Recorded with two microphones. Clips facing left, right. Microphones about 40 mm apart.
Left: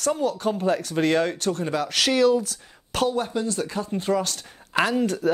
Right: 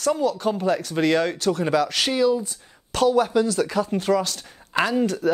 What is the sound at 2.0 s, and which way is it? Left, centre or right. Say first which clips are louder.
Speech: left 4 dB; left.